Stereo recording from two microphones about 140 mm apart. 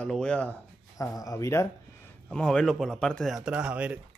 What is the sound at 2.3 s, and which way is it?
Speech, 5° left (ahead or behind).